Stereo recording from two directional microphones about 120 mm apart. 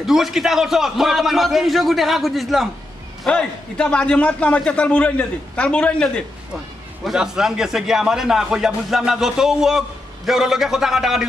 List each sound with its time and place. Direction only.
0.0 s a man's voice: 5° right (ahead or behind)
7.1 s speech: 5° right (ahead or behind)